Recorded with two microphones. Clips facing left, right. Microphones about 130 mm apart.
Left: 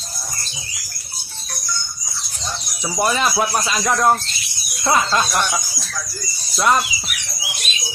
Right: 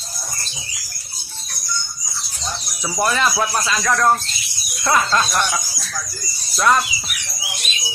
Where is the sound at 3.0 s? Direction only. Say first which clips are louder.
Even; 15° left (ahead or behind).